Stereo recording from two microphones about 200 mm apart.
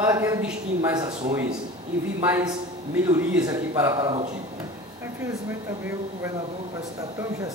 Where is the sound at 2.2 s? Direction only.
10° right (ahead or behind).